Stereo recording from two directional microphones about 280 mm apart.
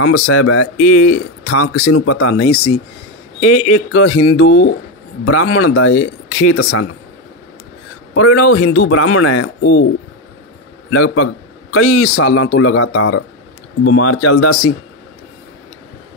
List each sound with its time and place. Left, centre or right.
0.0 s speech: left
2.4 s speech: left
3.3 s a man's voice: left
8.1 s a man's voice: left
10.9 s a man's voice: left